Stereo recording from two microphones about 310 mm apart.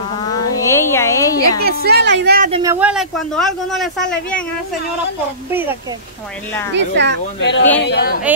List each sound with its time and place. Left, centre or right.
0.7 s a sound: centre
1.6 s a woman's voice: right
2.6 s speech: centre
5.5 s a woman's voice: centre
6.7 s a woman's voice: right
7.3 s speech: left